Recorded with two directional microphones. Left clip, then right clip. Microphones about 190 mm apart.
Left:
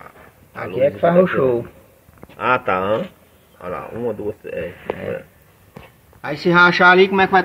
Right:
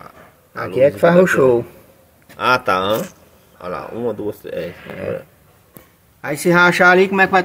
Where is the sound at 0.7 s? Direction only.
50° right (ahead or behind).